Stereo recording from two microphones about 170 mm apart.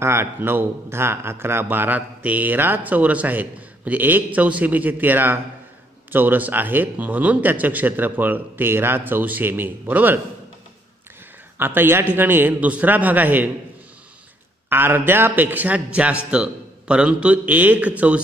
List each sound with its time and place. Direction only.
0.0 s a man's voice: 15° right (ahead or behind)
11.5 s a man's voice: 10° right (ahead or behind)
14.7 s a man's voice: 10° right (ahead or behind)